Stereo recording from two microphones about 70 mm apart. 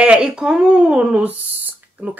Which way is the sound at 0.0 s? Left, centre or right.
Centre.